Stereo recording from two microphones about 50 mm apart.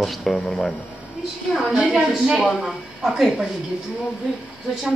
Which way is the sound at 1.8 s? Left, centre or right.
Centre.